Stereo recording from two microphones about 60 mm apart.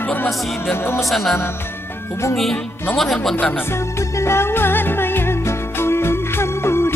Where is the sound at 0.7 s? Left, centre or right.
Left.